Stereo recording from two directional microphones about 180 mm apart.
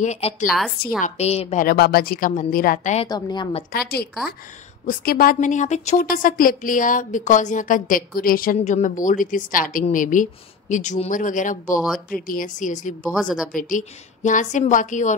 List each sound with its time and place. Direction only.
0.0 s a woman's voice: 40° left (ahead or behind)
1.6 s a woman's voice: 55° left (ahead or behind); by 3.1 s 40° left (ahead or behind)
3.1 s a woman's voice: 20° left (ahead or behind)
3.7 s a woman's voice: 60° left (ahead or behind)
11.8 s speech: centre (ahead or behind)
12.3 s a woman's voice: 50° left (ahead or behind)
13.1 s speech: centre (ahead or behind)
13.5 s a woman's voice: 50° left (ahead or behind)